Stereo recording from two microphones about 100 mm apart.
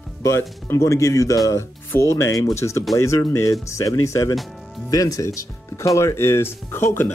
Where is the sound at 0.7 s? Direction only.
30° left (ahead or behind).